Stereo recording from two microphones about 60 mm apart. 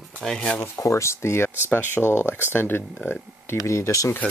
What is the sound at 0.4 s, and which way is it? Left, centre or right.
Speech, left.